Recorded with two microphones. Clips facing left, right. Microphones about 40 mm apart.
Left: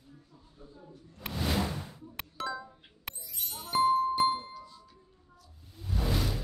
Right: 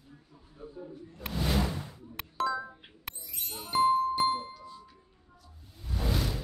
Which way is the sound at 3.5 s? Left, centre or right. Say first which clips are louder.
Right 1 dB; centre.